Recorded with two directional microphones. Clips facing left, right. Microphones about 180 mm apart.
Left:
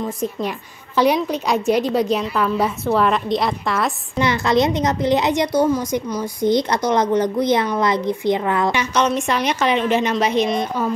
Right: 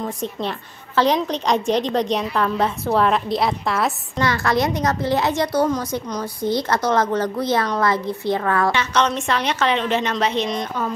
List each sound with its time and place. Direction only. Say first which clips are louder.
0.2 s a woman's voice: left 2 dB; 10° left (ahead or behind)
4.2 s a woman's voice: left 3 dB; 20° left (ahead or behind)